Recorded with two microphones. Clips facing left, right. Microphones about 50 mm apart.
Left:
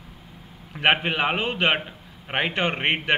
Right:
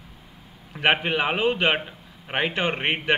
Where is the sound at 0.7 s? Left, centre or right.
Centre.